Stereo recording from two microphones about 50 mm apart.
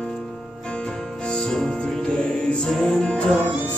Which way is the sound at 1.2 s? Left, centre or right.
Centre.